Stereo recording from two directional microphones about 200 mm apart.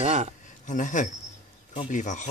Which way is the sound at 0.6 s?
40° left (ahead or behind).